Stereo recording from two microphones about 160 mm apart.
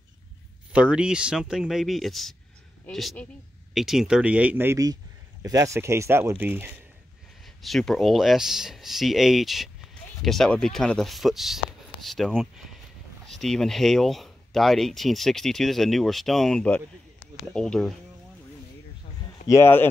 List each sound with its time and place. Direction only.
0.7 s speech: 5° right (ahead or behind)
7.4 s speech: centre (ahead or behind)
19.4 s speech: 15° left (ahead or behind)